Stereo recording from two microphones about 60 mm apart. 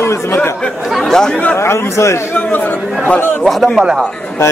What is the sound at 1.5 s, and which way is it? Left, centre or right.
Speech, left.